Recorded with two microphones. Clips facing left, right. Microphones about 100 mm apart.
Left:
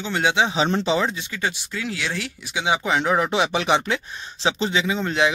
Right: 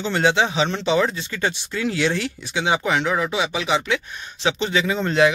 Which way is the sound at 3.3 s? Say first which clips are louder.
Left 2 dB; 55° left (ahead or behind).